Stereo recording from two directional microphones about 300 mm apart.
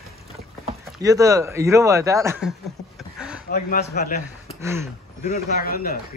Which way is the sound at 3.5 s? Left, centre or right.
Left.